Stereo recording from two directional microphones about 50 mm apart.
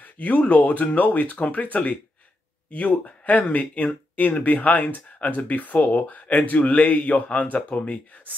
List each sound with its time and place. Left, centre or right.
0.0 s speech: left